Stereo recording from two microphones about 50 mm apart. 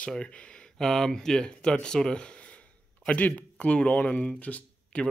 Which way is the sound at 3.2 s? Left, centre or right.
Left.